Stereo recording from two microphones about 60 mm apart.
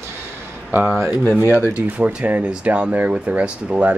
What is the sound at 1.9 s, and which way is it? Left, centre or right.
Speech, right.